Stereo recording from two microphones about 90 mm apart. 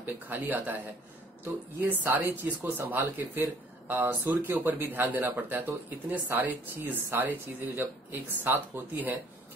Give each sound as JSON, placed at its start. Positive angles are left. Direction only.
{"t": 0.0, "sound": "speech", "side_deg": -20}